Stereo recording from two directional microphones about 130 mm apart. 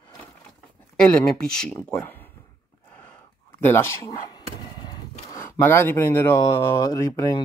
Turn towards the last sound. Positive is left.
turn(degrees=25)  # may be behind; listen again after turning